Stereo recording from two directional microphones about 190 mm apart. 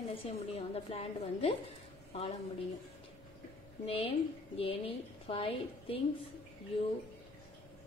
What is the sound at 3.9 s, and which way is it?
A woman's voice, 30° left (ahead or behind).